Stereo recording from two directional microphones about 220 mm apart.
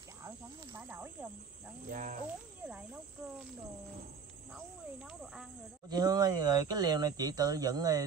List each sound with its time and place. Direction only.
0.7 s snake: 10° right (ahead or behind)
1.9 s cricket: 35° right (ahead or behind)
2.2 s insect: 5° right (ahead or behind)
5.0 s speech: centre (ahead or behind)
5.9 s speech: 20° right (ahead or behind)